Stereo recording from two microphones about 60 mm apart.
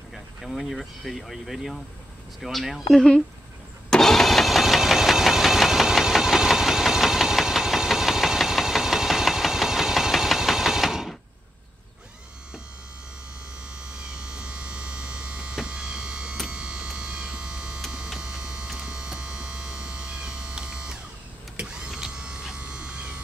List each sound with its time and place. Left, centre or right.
0.1 s speech: centre
3.9 s engine: centre
13.7 s electric shaver: centre
16.4 s a sound: centre
18.7 s electric shaver: centre
21.5 s power windows: centre